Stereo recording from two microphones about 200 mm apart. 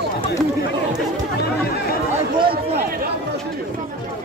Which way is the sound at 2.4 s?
50° right (ahead or behind).